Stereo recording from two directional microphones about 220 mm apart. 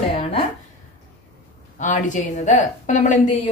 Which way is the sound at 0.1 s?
25° left (ahead or behind).